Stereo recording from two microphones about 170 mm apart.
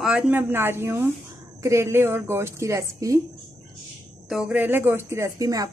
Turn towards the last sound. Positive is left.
turn(degrees=-20)  # may be behind; listen again after turning